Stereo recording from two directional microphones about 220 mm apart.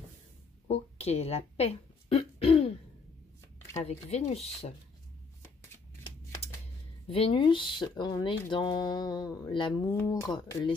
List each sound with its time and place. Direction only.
0.7 s a sound: 30° left (ahead or behind)
3.7 s speech: 30° left (ahead or behind)
7.1 s speech: 25° left (ahead or behind)